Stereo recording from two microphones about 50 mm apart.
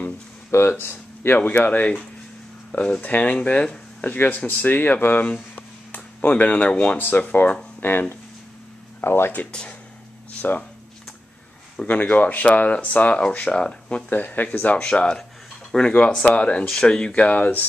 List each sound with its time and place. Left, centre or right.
0.5 s speech: left
1.4 s speech: left
7.0 s speech: left
9.0 s speech: left
10.4 s speech: left
11.8 s speech: left
14.1 s speech: left
14.8 s speech: centre
16.6 s speech: centre
17.0 s speech: left